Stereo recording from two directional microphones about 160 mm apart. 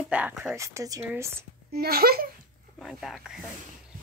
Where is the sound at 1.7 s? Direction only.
75° right (ahead or behind).